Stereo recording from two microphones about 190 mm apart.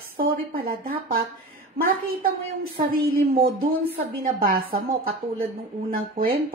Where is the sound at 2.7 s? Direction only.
50° right (ahead or behind).